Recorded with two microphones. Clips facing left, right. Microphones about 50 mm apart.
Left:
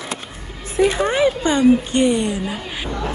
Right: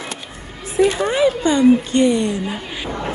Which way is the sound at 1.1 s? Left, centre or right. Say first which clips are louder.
Right 1 dB; left.